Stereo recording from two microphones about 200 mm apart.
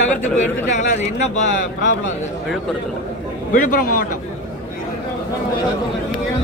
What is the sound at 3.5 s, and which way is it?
Speech, 45° left (ahead or behind).